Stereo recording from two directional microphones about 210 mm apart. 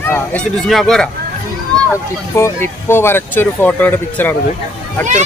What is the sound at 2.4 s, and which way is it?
Speech, 10° left (ahead or behind).